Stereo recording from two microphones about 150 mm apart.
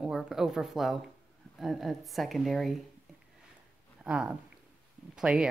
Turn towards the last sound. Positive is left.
turn(degrees=-5)  # may be behind; listen again after turning